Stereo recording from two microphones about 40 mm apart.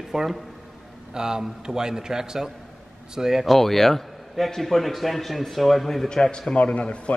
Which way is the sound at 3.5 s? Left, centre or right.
Centre.